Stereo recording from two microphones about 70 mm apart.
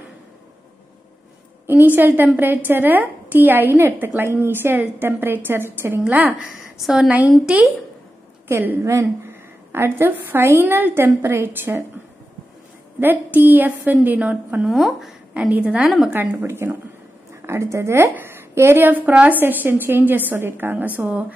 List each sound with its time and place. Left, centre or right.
2.0 s a woman's voice: right
6.8 s a woman's voice: centre
7.1 s a woman's voice: right
8.5 s a woman's voice: right
9.2 s a sound: right
10.4 s a woman's voice: right
13.0 s a woman's voice: right
14.7 s speech: centre
15.5 s a woman's voice: centre
15.8 s speech: centre
16.1 s a woman's voice: right